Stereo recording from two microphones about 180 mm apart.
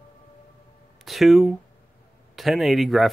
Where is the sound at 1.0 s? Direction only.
Centre (ahead or behind).